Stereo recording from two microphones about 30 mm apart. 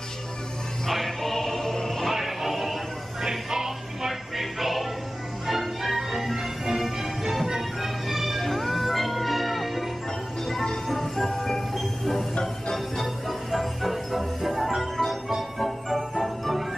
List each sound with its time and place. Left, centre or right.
0.8 s music: centre
2.1 s music: centre
10.4 s music: centre
11.2 s music: centre
11.7 s train: centre
12.7 s music: centre